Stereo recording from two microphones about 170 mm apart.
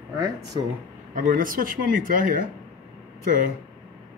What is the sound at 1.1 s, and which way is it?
Speech, 50° right (ahead or behind).